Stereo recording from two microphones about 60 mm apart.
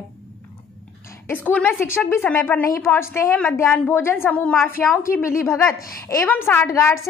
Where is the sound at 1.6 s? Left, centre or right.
Left.